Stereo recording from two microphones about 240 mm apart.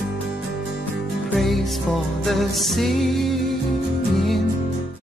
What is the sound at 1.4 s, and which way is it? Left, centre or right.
Music, centre.